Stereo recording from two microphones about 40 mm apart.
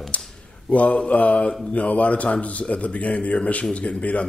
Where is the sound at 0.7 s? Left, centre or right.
Left.